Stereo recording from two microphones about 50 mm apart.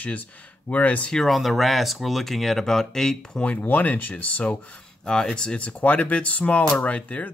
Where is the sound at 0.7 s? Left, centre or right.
Left.